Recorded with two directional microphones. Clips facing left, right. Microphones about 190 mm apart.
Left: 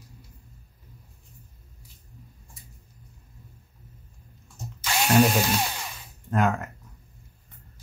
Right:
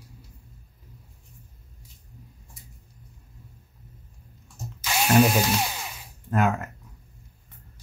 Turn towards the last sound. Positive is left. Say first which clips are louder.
# even
turn(degrees=-5)  # may be behind; listen again after turning